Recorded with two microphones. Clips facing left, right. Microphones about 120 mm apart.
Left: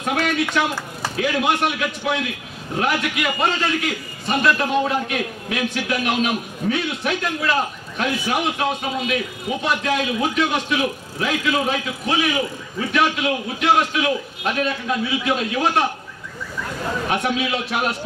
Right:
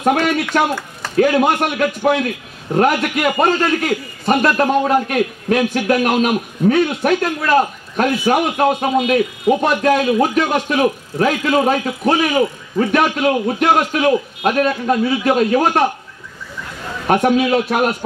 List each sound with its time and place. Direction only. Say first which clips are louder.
0.0 s a man's voice: right 6 dB; 45° right (ahead or behind)
17.1 s a man's voice: right 11 dB; 45° right (ahead or behind)